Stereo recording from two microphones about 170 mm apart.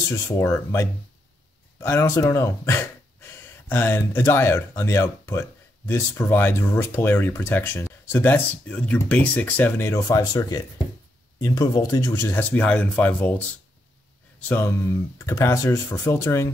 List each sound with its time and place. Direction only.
0.1 s speech: 15° left (ahead or behind)
14.5 s speech: 15° left (ahead or behind)